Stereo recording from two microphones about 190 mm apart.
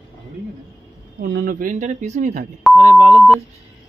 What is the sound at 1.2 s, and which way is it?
Speech, 50° right (ahead or behind).